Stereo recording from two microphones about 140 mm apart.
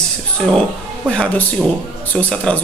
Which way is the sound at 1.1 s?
5° left (ahead or behind).